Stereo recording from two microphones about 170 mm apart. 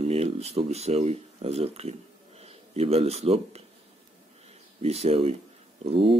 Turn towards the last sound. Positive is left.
turn(degrees=-35)  # may be behind; listen again after turning